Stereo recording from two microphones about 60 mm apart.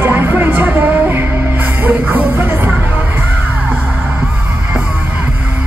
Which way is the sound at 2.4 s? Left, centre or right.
Right.